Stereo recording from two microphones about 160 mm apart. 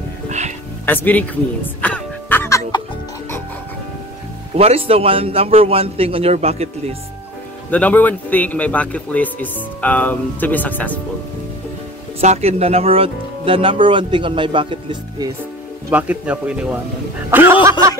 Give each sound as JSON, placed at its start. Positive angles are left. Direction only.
{"t": 0.8, "sound": "music", "side_deg": 10}
{"t": 4.6, "sound": "speech", "side_deg": -40}
{"t": 7.7, "sound": "a man's voice", "side_deg": 10}
{"t": 12.2, "sound": "speech", "side_deg": -40}
{"t": 15.9, "sound": "speech", "side_deg": -10}